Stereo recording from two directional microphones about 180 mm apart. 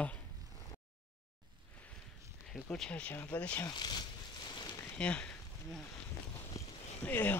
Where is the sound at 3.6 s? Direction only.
25° left (ahead or behind); by 5.7 s 5° left (ahead or behind).